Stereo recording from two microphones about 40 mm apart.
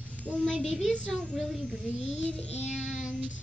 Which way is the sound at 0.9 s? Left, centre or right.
Left.